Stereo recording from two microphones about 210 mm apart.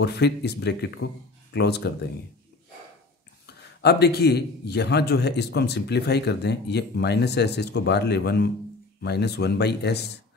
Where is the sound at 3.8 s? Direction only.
50° left (ahead or behind).